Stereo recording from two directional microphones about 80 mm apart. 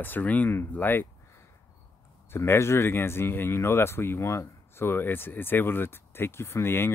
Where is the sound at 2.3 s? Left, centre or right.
Left.